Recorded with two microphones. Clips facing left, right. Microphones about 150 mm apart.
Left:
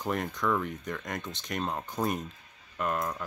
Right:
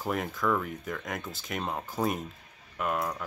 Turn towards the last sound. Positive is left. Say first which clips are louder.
# even
turn(degrees=-5)  # may be behind; listen again after turning